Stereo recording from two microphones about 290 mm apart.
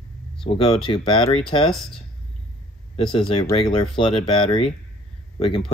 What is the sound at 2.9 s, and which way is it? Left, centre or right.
Speech, centre.